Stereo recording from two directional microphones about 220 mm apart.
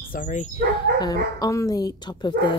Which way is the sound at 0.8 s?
20° left (ahead or behind).